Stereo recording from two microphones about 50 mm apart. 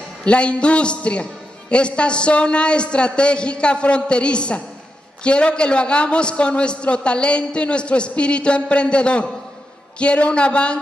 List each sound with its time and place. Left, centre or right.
0.2 s a man's voice: left